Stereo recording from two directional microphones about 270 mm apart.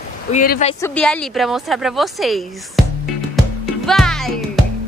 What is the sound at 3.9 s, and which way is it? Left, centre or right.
Music, centre.